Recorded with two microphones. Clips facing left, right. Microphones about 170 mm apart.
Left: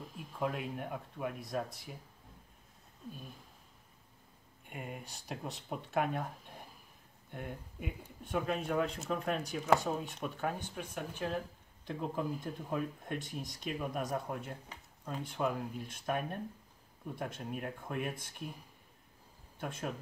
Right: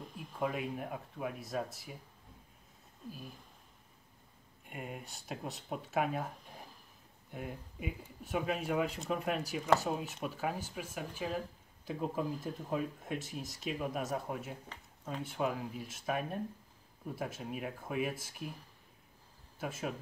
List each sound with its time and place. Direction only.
0.0 s speech: centre (ahead or behind)
3.1 s speech: 5° right (ahead or behind)
4.6 s speech: centre (ahead or behind)
14.7 s a sound: 5° left (ahead or behind)
15.2 s speech: 5° right (ahead or behind)
19.6 s speech: 5° right (ahead or behind)